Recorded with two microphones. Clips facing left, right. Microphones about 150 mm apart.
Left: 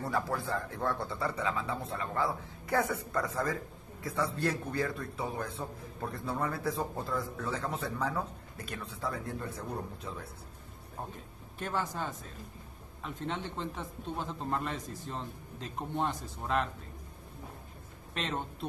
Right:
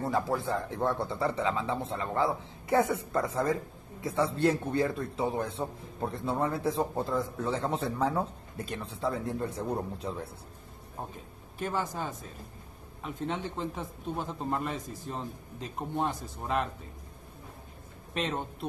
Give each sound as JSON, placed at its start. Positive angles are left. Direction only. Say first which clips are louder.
{"t": 0.0, "sound": "a man's voice", "louder": "right 4 dB", "side_deg": -20}
{"t": 11.6, "sound": "a man's voice", "louder": "right 2 dB", "side_deg": -5}
{"t": 18.1, "sound": "speech", "louder": "right 3 dB", "side_deg": -5}